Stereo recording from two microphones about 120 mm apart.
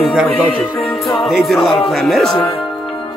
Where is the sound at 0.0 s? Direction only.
5° right (ahead or behind).